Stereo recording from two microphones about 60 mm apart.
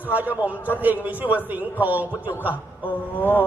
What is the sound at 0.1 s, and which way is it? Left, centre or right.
A man's voice, right.